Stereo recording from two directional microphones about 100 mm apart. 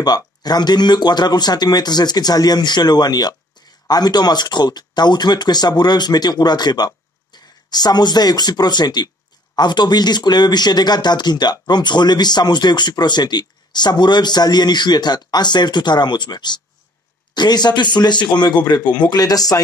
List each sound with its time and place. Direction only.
0.0 s speech: 40° left (ahead or behind)